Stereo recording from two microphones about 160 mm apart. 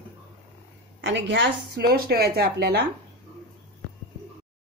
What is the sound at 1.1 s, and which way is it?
Speech, 90° right.